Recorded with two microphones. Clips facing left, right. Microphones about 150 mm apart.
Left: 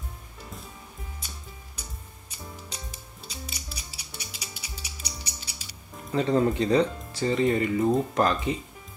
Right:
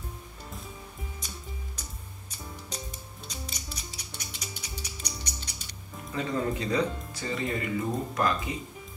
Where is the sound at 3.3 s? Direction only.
10° left (ahead or behind).